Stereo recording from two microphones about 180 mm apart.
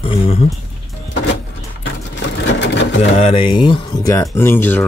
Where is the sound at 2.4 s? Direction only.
80° left.